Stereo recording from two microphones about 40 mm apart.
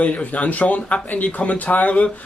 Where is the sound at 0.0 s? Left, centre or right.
Left.